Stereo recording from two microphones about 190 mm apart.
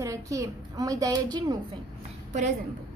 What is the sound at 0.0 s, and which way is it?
A woman's voice, 15° right (ahead or behind).